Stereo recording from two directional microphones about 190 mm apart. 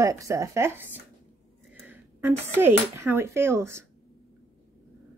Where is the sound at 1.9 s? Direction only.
10° right (ahead or behind).